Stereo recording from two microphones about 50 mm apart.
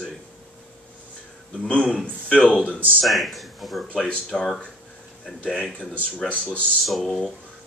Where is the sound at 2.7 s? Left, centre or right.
Right.